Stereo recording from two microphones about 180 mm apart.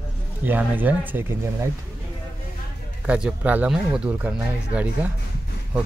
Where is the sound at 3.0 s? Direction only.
10° right (ahead or behind).